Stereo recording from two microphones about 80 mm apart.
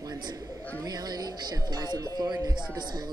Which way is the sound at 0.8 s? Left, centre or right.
Right.